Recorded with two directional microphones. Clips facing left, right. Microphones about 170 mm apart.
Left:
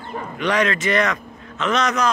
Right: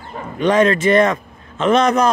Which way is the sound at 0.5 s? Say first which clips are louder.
Right 7 dB; 25° right (ahead or behind).